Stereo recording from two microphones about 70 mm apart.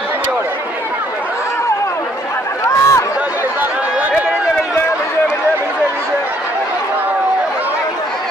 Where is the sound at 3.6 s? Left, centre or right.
Right.